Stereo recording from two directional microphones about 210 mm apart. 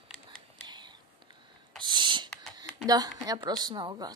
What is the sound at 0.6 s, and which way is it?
Whispering, 20° right (ahead or behind).